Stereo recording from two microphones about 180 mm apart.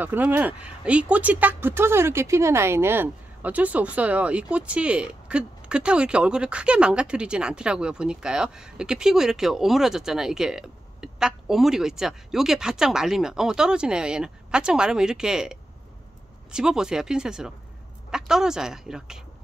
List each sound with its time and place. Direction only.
0.0 s speech: 10° right (ahead or behind)
16.5 s speech: 5° right (ahead or behind)